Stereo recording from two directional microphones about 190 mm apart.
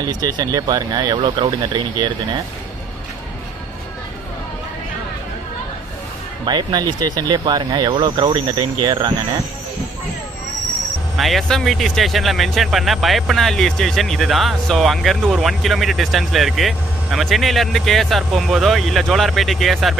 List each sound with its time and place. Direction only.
0.0 s speech: 20° right (ahead or behind)
6.4 s speech: 20° right (ahead or behind)
11.1 s speech: centre (ahead or behind)